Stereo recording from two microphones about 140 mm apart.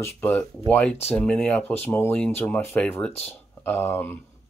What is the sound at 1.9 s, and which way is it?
Speech, 20° left (ahead or behind).